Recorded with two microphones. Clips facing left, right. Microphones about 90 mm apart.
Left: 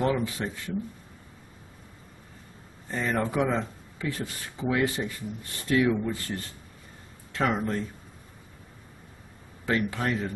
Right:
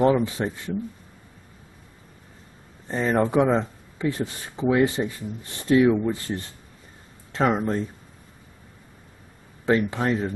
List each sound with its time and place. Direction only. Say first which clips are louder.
0.0 s speech: right 7 dB; 25° right (ahead or behind)
2.9 s speech: right 6 dB; 25° right (ahead or behind)
9.7 s speech: right 5 dB; 25° right (ahead or behind)